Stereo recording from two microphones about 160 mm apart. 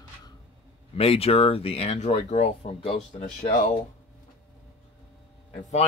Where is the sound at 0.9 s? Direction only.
35° left (ahead or behind).